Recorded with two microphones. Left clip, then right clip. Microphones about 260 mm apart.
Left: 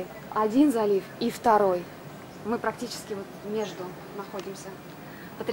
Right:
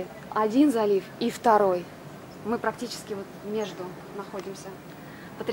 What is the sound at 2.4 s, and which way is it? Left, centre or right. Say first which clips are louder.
Speech: right 1 dB; centre.